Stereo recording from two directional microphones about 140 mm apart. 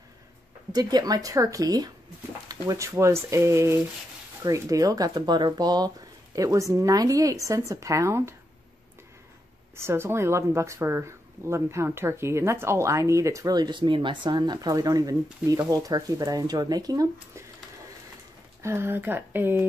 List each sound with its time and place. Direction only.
0.7 s speech: 30° right (ahead or behind)
9.8 s speech: 20° right (ahead or behind)
18.6 s speech: 20° right (ahead or behind)